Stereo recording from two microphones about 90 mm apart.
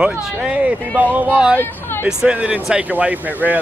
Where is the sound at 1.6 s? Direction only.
25° left (ahead or behind).